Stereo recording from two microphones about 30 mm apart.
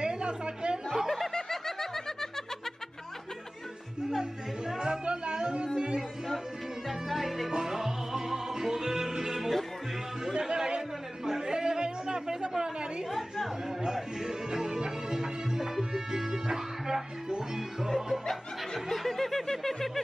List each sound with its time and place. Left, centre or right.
0.0 s chatter: right
0.9 s snicker: centre
1.3 s snicker: centre
5.0 s music: right
6.9 s music: centre
10.4 s chatter: centre
14.2 s music: right
16.5 s music: centre
18.9 s snicker: centre